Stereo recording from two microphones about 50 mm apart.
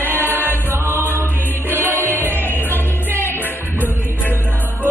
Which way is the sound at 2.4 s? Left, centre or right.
Left.